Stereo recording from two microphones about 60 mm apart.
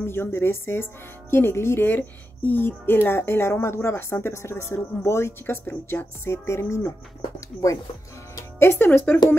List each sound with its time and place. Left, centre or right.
0.0 s speech: left
8.5 s speech: left